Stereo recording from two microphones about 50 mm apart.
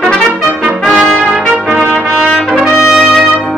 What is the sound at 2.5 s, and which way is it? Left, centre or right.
Trumpet, centre.